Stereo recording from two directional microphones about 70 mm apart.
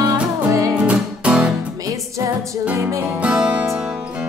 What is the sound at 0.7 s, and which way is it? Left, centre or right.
Music, centre.